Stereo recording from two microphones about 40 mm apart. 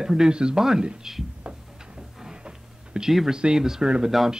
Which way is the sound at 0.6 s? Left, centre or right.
Centre.